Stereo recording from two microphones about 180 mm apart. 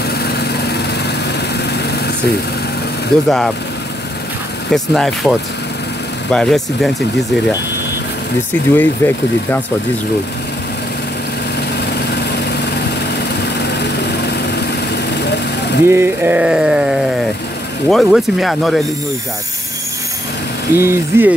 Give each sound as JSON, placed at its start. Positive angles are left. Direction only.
{"t": 0.2, "sound": "lawn mower", "side_deg": 65}
{"t": 3.3, "sound": "speech", "side_deg": 0}
{"t": 4.6, "sound": "speech", "side_deg": 0}
{"t": 6.3, "sound": "speech", "side_deg": 5}
{"t": 8.7, "sound": "speech", "side_deg": 10}
{"t": 13.7, "sound": "lawn mower", "side_deg": 65}
{"t": 15.2, "sound": "vehicle", "side_deg": 70}
{"t": 15.9, "sound": "speech", "side_deg": -10}
{"t": 20.7, "sound": "speech", "side_deg": -15}